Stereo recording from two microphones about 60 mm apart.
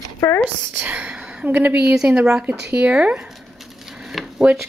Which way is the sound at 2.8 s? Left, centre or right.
Right.